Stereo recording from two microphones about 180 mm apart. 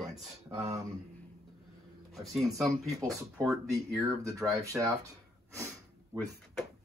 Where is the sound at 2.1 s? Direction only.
Centre (ahead or behind).